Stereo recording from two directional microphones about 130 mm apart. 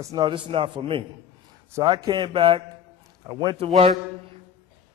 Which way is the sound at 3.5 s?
50° right (ahead or behind).